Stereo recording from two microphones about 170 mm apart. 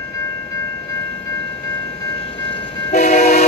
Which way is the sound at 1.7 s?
35° left (ahead or behind).